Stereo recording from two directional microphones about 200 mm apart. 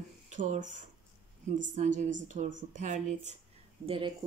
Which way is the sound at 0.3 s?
40° right (ahead or behind).